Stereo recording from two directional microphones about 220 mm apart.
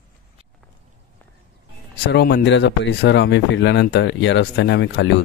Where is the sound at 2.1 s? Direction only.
45° left (ahead or behind).